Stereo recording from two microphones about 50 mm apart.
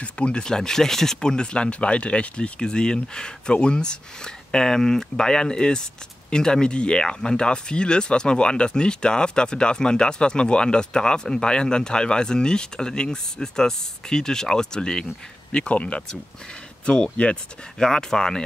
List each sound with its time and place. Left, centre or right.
0.0 s speech: left